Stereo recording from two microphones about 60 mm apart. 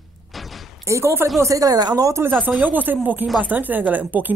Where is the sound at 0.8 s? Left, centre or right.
Right.